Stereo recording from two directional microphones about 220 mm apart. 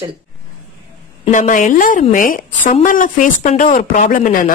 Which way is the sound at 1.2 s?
35° left (ahead or behind).